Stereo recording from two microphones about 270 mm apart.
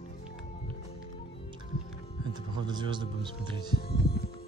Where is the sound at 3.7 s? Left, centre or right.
Left.